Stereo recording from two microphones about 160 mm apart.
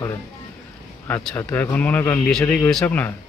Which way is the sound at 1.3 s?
10° left (ahead or behind).